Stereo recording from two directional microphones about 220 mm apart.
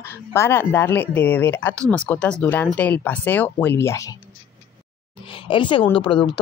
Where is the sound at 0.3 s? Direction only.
10° left (ahead or behind).